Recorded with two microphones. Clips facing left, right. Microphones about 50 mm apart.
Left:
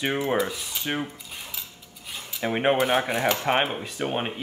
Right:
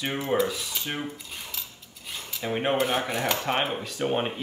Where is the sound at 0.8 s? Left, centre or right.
Centre.